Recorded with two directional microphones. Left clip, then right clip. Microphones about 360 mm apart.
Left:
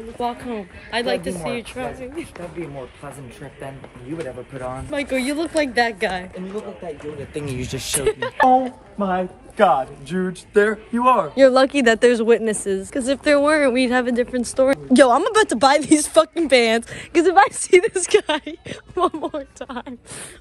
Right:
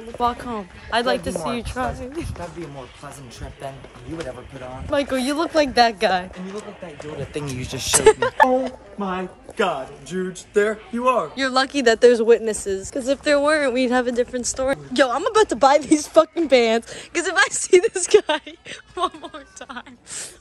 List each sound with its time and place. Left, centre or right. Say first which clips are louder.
0.2 s speech: right 3 dB; centre
4.9 s speech: right 2 dB; centre
7.5 s speech: even; centre
7.9 s speech: right 7 dB; centre
9.6 s speech: left 7 dB; centre
11.8 s speech: right 1 dB; centre
18.9 s speech: left 5 dB; centre